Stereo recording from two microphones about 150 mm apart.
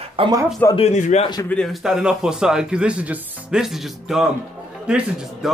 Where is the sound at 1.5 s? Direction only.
Centre (ahead or behind).